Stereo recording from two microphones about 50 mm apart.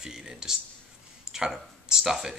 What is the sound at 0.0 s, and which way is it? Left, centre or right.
Speech, centre.